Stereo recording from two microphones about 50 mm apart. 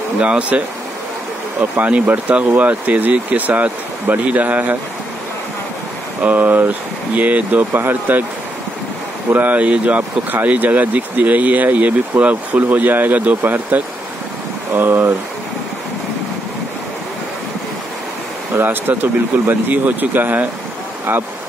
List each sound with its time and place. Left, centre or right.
0.2 s speech: right
1.8 s speech: right
6.2 s speech: right
7.7 s speech: right
9.3 s speech: right
18.5 s speech: right
19.3 s speech: right